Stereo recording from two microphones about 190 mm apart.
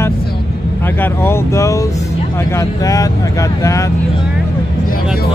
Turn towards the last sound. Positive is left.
turn(degrees=15)  # may be behind; listen again after turning